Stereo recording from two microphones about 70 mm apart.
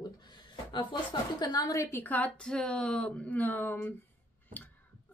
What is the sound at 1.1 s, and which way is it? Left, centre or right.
Speech, left.